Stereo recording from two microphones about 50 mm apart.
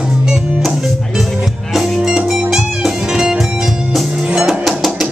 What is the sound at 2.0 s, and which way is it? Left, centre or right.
Music, centre.